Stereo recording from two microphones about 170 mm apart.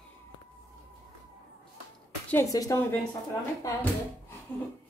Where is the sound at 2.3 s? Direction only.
20° left (ahead or behind).